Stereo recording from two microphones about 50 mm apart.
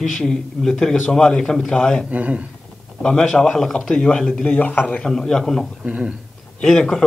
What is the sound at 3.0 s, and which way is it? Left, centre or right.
Speech, centre.